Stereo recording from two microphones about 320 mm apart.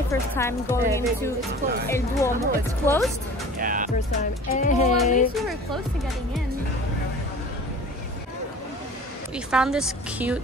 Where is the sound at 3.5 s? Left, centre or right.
Right.